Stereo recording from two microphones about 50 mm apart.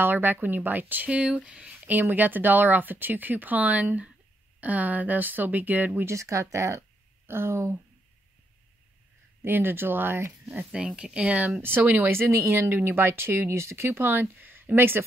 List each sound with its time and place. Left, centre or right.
0.0 s speech: right
1.0 s speech: right
6.0 s speech: right
7.2 s speech: right
9.4 s speech: right
10.8 s speech: centre
11.6 s speech: right
12.1 s speech: right